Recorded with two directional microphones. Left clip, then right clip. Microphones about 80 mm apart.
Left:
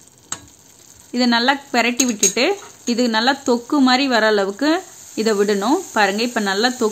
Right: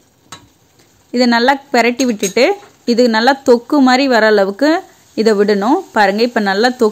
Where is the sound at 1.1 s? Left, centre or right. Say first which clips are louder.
Right 5 dB; right.